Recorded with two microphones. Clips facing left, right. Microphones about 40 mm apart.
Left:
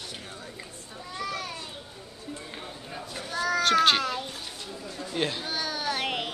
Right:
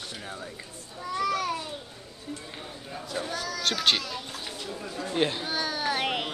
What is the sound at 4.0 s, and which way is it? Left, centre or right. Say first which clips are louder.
Speech: left 5 dB; left.